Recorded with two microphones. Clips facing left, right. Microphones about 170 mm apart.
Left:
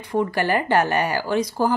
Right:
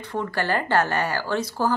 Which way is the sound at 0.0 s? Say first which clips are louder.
Left 5 dB; 15° left (ahead or behind).